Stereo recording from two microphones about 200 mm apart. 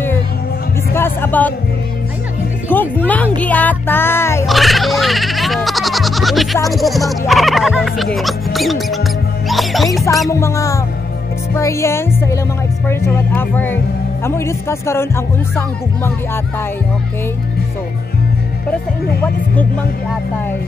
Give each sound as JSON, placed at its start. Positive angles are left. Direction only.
{"t": 0.9, "sound": "speech", "side_deg": 10}
{"t": 2.7, "sound": "speech", "side_deg": 10}
{"t": 4.5, "sound": "bleat", "side_deg": 0}
{"t": 6.7, "sound": "speech", "side_deg": 0}
{"t": 10.3, "sound": "speech", "side_deg": 15}